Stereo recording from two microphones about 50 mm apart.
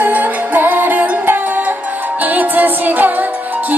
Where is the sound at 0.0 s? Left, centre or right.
Right.